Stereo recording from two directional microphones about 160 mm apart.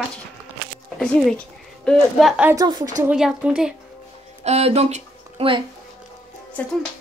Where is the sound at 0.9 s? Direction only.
5° left (ahead or behind).